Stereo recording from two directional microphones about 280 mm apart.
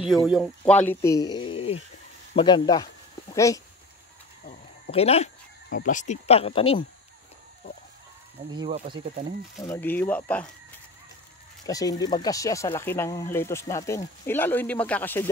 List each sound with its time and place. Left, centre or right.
0.0 s speech: centre
4.5 s a sound: left
5.8 s speech: left
8.5 s speech: centre
9.6 s speech: centre
11.6 s speech: centre